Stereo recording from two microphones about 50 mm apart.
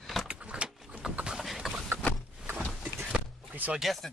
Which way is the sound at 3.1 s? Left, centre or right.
Right.